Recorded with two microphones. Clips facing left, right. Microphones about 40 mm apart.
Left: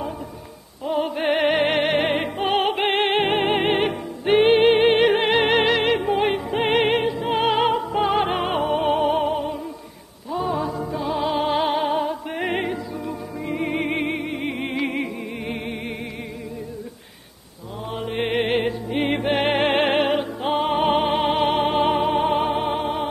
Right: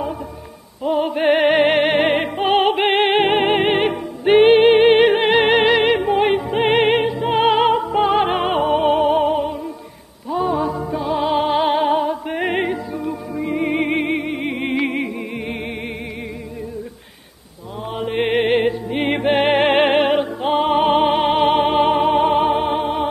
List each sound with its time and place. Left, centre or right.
0.8 s music: centre
10.3 s music: centre
13.7 s music: right
13.9 s music: centre
17.9 s music: centre